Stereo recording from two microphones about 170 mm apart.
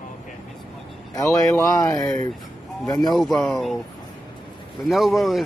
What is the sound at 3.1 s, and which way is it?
Speech, centre (ahead or behind).